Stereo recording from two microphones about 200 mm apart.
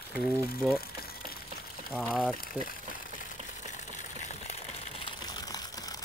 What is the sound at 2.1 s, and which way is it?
Speech, 10° left (ahead or behind).